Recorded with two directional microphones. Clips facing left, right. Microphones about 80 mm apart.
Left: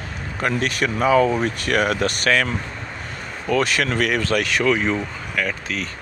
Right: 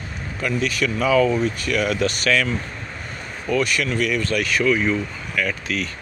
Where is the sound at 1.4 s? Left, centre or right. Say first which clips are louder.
Left 1 dB; left.